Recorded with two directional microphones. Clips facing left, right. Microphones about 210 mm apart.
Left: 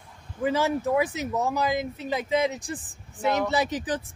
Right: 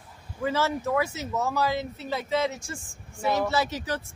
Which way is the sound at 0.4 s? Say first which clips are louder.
Left 2 dB; 15° left (ahead or behind).